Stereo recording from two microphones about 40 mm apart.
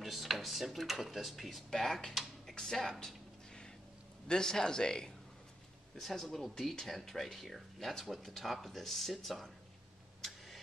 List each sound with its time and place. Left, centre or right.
0.0 s speech: centre
1.7 s speech: centre
4.3 s speech: centre
6.1 s speech: centre
10.2 s a sound: centre